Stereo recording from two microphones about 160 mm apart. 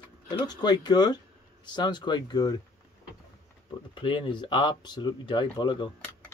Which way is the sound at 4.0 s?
30° left (ahead or behind).